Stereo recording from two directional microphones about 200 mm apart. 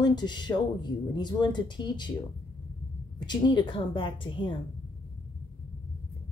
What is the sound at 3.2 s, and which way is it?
Speech, 20° left (ahead or behind).